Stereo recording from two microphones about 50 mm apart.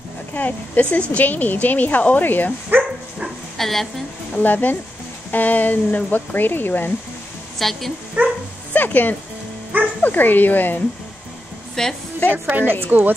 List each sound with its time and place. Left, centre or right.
0.3 s speech: left
3.5 s speech: centre
4.4 s speech: left
7.5 s speech: centre
8.2 s dog: right
8.7 s speech: left
11.8 s a woman's voice: centre
12.4 s speech: right